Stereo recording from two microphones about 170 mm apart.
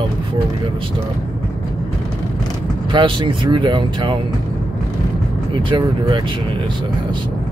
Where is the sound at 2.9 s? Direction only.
30° right (ahead or behind).